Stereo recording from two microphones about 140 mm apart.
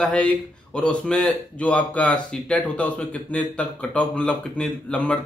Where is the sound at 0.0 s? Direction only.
5° left (ahead or behind).